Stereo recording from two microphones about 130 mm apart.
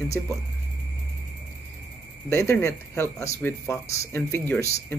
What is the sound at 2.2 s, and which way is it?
A man's voice, 20° left (ahead or behind).